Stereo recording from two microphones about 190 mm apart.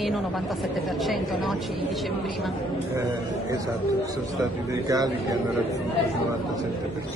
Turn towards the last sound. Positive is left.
turn(degrees=-20)  # may be behind; listen again after turning